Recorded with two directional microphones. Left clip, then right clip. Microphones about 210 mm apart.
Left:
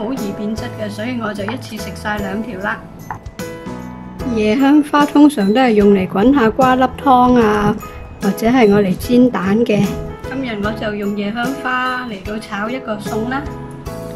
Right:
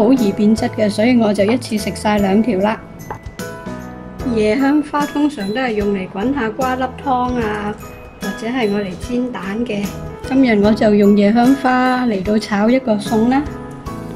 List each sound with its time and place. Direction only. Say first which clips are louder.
0.4 s speech: right 8 dB; 20° right (ahead or behind)
4.2 s speech: even; centre (ahead or behind)
4.9 s speech: left 6 dB; 15° left (ahead or behind)
10.3 s a woman's voice: right 9 dB; 20° right (ahead or behind)